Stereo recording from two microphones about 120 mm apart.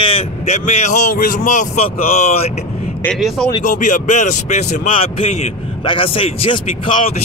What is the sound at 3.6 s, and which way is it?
A man's voice, 90° left.